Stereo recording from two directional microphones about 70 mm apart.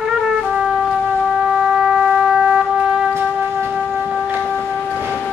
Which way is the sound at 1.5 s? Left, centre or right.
Centre.